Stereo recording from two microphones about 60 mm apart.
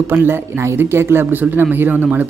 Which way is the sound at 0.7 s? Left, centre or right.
Right.